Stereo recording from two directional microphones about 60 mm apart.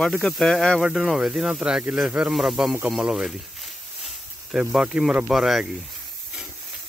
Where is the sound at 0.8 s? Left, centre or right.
Centre.